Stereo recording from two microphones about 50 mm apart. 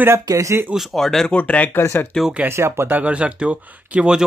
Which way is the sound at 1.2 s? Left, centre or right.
Left.